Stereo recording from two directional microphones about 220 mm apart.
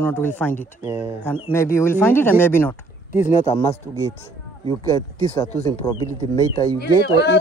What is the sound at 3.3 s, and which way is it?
Speech, 30° left (ahead or behind).